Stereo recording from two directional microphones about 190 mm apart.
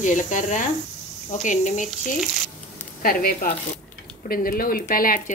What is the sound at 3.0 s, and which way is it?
A woman's voice, 50° left (ahead or behind).